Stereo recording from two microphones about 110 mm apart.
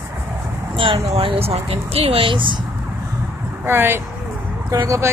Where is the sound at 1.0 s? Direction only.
55° right (ahead or behind).